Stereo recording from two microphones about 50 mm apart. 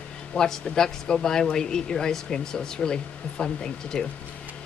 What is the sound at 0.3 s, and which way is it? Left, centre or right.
Speech, centre.